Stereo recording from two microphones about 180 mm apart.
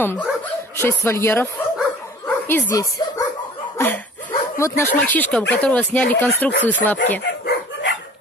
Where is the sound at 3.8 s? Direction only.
10° left (ahead or behind).